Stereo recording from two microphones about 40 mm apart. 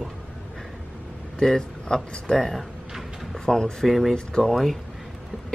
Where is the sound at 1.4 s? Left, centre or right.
Centre.